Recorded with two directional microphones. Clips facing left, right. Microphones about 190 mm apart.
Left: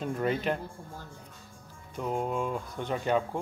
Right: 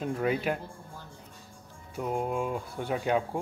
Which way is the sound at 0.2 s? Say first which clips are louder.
Even; 5° right (ahead or behind).